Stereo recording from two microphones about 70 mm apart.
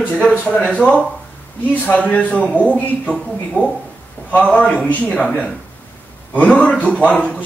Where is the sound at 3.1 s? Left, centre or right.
Centre.